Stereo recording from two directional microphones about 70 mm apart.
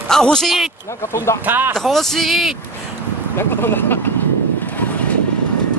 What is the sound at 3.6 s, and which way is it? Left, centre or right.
Speech, left.